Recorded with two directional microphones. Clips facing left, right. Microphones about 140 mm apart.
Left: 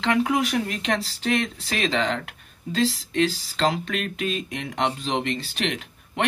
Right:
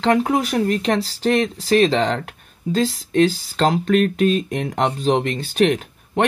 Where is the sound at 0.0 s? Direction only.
40° right (ahead or behind).